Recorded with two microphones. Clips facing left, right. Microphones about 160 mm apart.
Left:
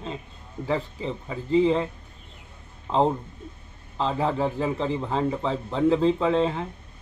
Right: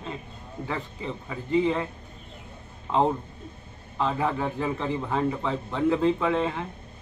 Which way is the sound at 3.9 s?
25° left (ahead or behind).